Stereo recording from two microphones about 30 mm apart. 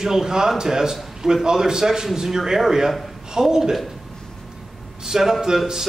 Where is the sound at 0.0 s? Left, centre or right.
Centre.